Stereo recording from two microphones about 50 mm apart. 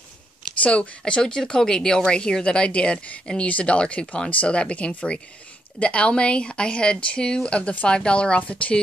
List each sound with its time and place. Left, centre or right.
0.6 s speech: left